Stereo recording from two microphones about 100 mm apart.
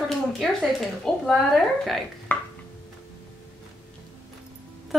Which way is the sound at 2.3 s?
15° left (ahead or behind).